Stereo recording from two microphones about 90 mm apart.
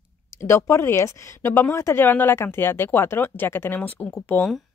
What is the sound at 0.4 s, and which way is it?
Speech, 30° left (ahead or behind).